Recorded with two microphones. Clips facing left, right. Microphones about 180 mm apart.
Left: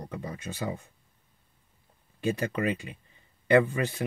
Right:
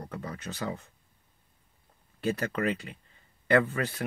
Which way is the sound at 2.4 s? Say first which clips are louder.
Left 1 dB; 15° left (ahead or behind).